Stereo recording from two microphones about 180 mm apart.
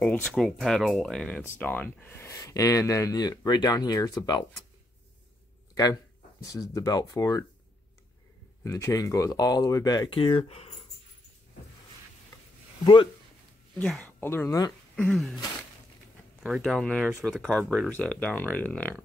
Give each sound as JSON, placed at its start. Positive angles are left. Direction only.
{"t": 0.0, "sound": "speech", "side_deg": 5}
{"t": 6.4, "sound": "speech", "side_deg": 20}
{"t": 8.6, "sound": "speech", "side_deg": 15}
{"t": 12.8, "sound": "speech", "side_deg": 25}
{"t": 13.7, "sound": "speech", "side_deg": 5}
{"t": 15.0, "sound": "speech", "side_deg": 0}